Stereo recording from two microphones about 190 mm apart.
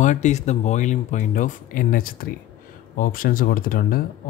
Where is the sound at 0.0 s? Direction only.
40° left (ahead or behind).